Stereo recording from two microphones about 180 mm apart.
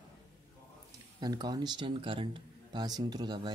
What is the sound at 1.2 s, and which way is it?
Speech, 20° right (ahead or behind).